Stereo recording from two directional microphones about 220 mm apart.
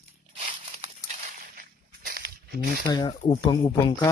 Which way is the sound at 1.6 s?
40° right (ahead or behind).